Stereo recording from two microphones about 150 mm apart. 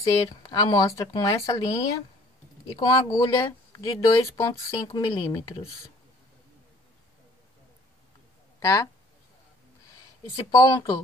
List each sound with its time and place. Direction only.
0.0 s speech: 25° left (ahead or behind)
2.8 s speech: 30° left (ahead or behind)
8.5 s speech: 20° left (ahead or behind)
10.2 s speech: 25° left (ahead or behind)